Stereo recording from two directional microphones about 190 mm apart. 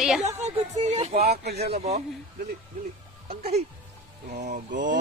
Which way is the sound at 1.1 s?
55° right (ahead or behind).